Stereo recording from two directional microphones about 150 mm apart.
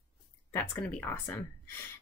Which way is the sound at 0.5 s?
15° left (ahead or behind).